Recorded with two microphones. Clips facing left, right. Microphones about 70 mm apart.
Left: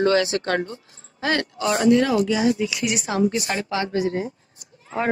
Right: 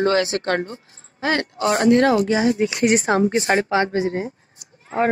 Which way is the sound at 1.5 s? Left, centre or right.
Right.